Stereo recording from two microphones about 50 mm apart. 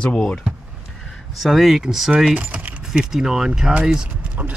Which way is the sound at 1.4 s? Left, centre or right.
Centre.